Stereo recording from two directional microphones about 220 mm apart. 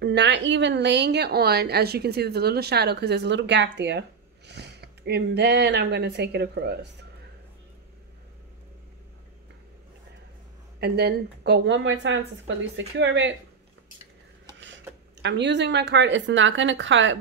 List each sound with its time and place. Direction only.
0.0 s speech: 55° right (ahead or behind)
10.8 s a woman's voice: 45° right (ahead or behind)
15.2 s a woman's voice: 50° right (ahead or behind)